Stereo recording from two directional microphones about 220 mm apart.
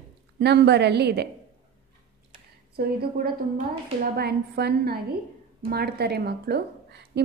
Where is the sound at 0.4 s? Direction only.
50° right (ahead or behind).